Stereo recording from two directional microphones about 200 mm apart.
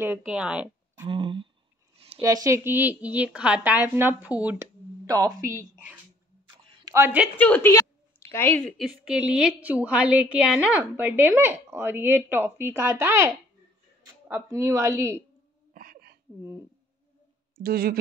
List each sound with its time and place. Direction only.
0.0 s speech: 5° right (ahead or behind)
1.0 s a sound: 25° right (ahead or behind)
2.1 s a woman's voice: 15° right (ahead or behind)
5.0 s a woman's voice: 20° right (ahead or behind)
7.3 s a woman's voice: 10° left (ahead or behind); by 15.2 s 15° right (ahead or behind)
15.7 s a sound: 45° right (ahead or behind)
17.6 s speech: 50° right (ahead or behind)